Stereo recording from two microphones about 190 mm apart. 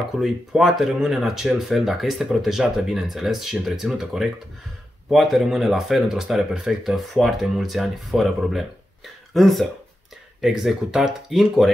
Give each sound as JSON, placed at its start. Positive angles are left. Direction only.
{"t": 0.2, "sound": "speech", "side_deg": 0}